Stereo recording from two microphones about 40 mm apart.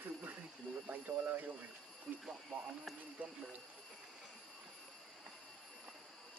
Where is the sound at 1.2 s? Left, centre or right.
Right.